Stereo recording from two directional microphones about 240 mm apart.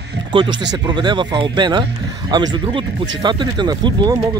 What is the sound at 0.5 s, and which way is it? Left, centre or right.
Speech, right.